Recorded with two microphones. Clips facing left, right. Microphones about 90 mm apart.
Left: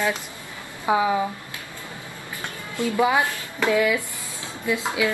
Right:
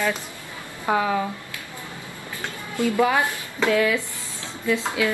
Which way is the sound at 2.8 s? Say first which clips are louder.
Even; 15° left (ahead or behind).